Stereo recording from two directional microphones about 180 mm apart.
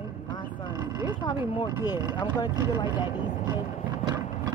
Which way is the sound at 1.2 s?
25° left (ahead or behind).